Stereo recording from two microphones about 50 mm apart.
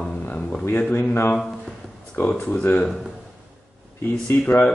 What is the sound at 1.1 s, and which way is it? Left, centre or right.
Speech, left.